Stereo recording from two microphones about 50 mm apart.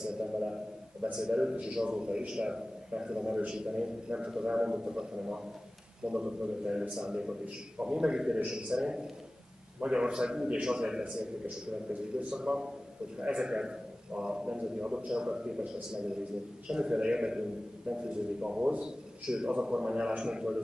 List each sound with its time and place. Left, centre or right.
0.0 s a man's voice: centre
11.4 s a man's voice: right
12.3 s a man's voice: centre